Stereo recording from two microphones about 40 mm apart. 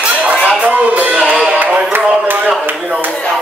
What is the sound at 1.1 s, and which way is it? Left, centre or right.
Music, right.